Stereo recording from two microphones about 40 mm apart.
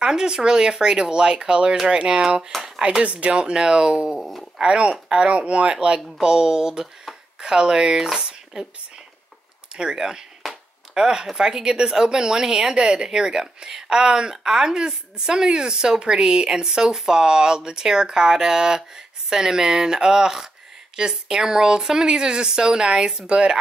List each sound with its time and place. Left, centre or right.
0.0 s speech: centre
2.5 s speech: centre
3.0 s speech: right; by 8.6 s centre
9.8 s a woman's voice: centre
10.5 s a sound: centre
11.3 s a woman's voice: centre